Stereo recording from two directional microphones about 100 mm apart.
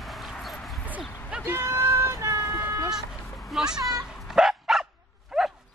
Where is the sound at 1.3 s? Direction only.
20° right (ahead or behind).